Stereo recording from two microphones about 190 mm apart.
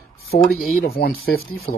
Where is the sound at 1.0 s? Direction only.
55° left (ahead or behind).